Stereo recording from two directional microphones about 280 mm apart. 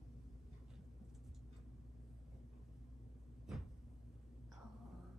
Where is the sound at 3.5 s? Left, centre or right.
Centre.